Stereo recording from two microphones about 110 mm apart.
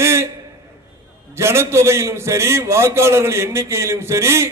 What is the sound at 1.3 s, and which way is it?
A man's voice, 25° right (ahead or behind).